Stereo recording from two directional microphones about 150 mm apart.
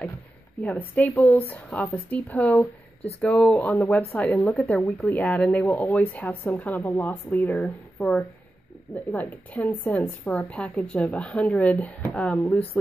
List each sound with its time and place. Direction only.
0.6 s speech: 10° left (ahead or behind)